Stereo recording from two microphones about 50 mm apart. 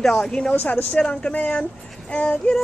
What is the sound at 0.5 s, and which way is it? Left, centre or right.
Speech, left.